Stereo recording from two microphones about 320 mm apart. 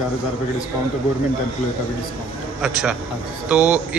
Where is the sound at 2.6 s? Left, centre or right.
Centre.